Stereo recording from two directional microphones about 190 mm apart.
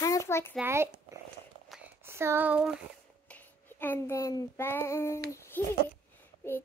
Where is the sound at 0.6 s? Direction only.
15° right (ahead or behind).